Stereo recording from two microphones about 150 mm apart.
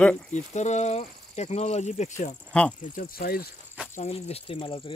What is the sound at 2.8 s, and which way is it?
Speech, 65° left (ahead or behind).